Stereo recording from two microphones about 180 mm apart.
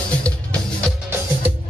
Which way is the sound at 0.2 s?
5° left (ahead or behind).